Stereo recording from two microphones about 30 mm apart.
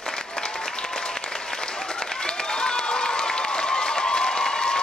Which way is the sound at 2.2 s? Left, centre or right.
Left.